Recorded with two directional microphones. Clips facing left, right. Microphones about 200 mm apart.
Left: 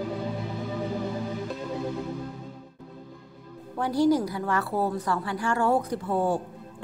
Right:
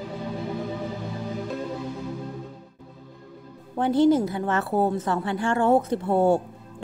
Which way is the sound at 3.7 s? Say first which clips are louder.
Right 3 dB; 25° right (ahead or behind).